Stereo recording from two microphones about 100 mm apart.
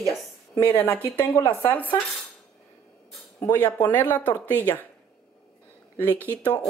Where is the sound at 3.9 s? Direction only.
20° left (ahead or behind).